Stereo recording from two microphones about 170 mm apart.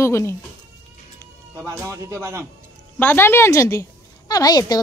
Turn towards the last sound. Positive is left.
turn(degrees=25)  # may be behind; listen again after turning